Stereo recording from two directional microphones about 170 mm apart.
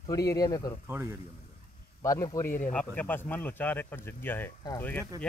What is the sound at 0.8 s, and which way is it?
Speech, 15° right (ahead or behind).